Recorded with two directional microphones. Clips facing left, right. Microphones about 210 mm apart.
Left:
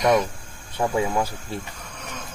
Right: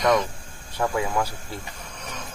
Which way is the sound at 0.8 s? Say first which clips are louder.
Left 2 dB; 20° left (ahead or behind).